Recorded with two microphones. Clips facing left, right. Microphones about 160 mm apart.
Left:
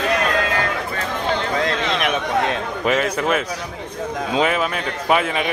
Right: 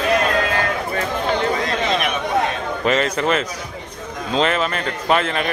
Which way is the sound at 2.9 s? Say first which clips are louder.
Right 1 dB; 5° left (ahead or behind).